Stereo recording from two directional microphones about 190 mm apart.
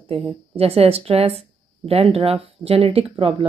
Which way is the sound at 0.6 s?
30° right (ahead or behind).